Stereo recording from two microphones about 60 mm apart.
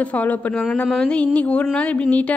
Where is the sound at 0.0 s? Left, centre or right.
Left.